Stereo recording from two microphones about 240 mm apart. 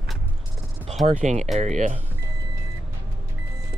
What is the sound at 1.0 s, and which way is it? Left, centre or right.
Speech, right.